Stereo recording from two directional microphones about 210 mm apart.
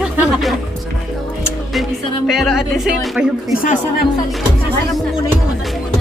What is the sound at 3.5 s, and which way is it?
Speech, 40° left (ahead or behind).